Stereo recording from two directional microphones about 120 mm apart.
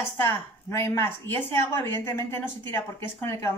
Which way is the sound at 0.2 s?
20° left (ahead or behind).